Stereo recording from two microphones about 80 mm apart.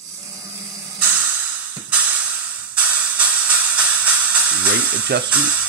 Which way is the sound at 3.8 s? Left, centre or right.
Centre.